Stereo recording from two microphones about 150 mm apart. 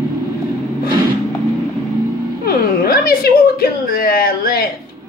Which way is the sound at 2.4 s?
85° left.